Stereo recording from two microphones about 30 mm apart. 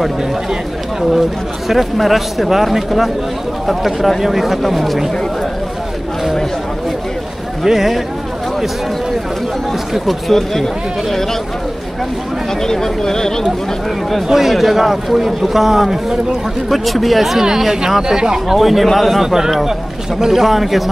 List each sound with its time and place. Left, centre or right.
1.7 s a man's voice: centre
7.6 s speech: centre
9.9 s a man's voice: centre
12.6 s speech: centre
14.3 s speech: centre
16.6 s a man's voice: centre
17.4 s speech: centre
18.0 s speech: right
18.6 s a man's voice: centre
20.2 s speech: centre
20.4 s a man's voice: centre